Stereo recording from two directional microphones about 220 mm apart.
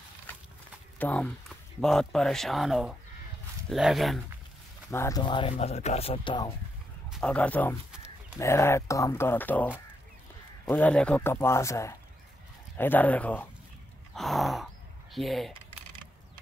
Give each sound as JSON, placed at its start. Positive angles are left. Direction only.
{"t": 0.9, "sound": "speech", "side_deg": 5}
{"t": 4.9, "sound": "speech", "side_deg": 15}
{"t": 7.1, "sound": "a man's voice", "side_deg": 5}
{"t": 14.1, "sound": "gasp", "side_deg": 0}
{"t": 15.1, "sound": "speech", "side_deg": 0}